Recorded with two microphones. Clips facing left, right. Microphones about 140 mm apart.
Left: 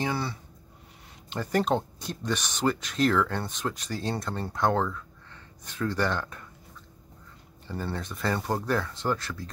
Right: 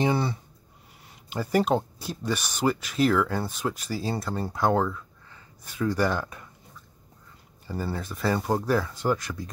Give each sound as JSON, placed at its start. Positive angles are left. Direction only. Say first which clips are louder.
{"t": 0.0, "sound": "a sound", "louder": "right 5 dB", "side_deg": -20}
{"t": 1.3, "sound": "speech", "louder": "right 2 dB", "side_deg": -10}
{"t": 7.6, "sound": "speech", "louder": "right 2 dB", "side_deg": -5}